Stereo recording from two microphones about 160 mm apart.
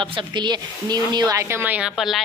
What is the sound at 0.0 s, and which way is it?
Speech, 30° right (ahead or behind).